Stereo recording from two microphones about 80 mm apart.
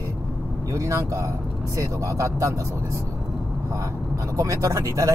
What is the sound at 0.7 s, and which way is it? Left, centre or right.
A man's voice, right.